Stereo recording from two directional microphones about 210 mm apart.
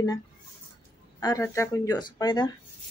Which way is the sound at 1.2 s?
15° left (ahead or behind).